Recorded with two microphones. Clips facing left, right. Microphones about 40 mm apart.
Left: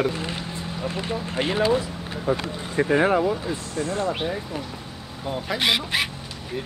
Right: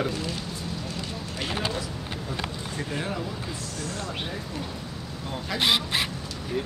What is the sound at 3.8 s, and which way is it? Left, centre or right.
Speech, left.